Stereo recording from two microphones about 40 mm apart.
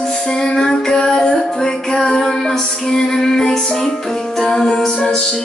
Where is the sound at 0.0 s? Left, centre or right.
Left.